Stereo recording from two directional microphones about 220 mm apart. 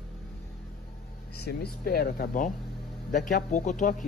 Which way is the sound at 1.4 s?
45° left (ahead or behind).